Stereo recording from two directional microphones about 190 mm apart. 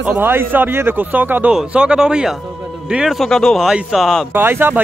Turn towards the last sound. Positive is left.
turn(degrees=-10)  # may be behind; listen again after turning